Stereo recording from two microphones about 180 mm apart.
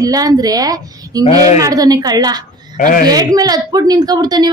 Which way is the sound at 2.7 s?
50° left (ahead or behind).